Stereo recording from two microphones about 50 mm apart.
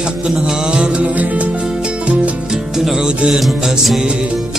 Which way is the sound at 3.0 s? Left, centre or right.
Centre.